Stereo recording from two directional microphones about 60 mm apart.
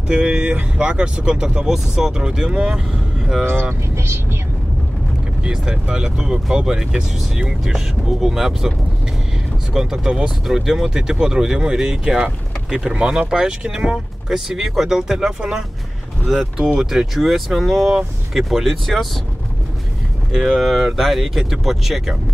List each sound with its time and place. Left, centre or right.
0.1 s speech: centre
3.9 s speech: right
5.4 s speech: centre
9.8 s speech: centre
20.3 s speech: centre